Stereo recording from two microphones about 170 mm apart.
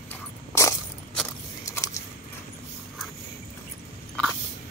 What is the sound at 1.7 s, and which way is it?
Keys jangling, 20° left (ahead or behind).